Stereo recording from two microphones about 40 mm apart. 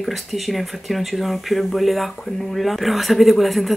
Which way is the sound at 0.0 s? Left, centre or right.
Centre.